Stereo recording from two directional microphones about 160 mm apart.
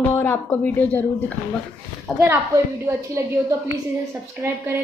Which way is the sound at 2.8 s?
20° right (ahead or behind).